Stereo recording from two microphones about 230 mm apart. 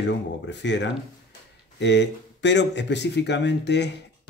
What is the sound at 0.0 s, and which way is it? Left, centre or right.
Speech, left.